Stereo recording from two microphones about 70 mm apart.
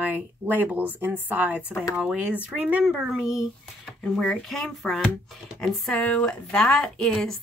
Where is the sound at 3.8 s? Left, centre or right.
Centre.